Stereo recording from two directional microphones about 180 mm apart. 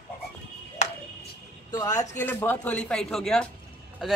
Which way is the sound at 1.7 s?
20° left (ahead or behind).